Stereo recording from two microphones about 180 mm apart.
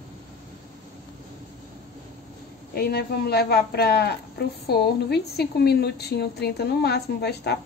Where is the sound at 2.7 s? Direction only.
60° left (ahead or behind).